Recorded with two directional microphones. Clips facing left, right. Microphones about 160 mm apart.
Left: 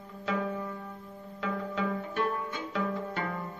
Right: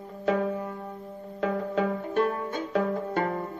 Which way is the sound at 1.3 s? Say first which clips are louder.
Right 6 dB; 45° right (ahead or behind).